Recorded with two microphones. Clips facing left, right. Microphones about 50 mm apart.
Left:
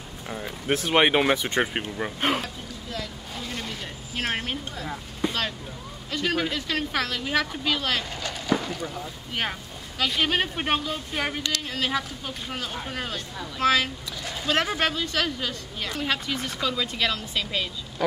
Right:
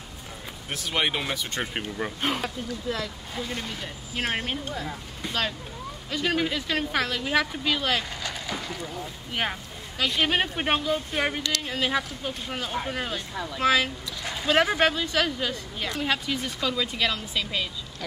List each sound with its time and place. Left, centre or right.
0.3 s speech: left
1.7 s speech: centre
3.3 s a woman's voice: centre
6.0 s a woman's voice: centre
8.8 s speech: centre
9.3 s a woman's voice: centre
11.4 s a sound: centre
11.7 s a woman's voice: centre